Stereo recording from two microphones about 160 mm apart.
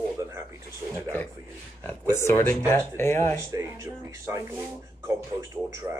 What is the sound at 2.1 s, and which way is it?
Speech, 15° left (ahead or behind).